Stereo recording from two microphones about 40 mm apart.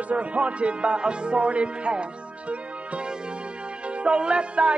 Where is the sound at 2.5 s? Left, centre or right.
Right.